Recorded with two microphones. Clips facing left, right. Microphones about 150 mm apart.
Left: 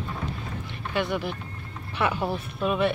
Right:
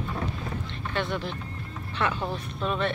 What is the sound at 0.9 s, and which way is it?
Speech, 5° left (ahead or behind).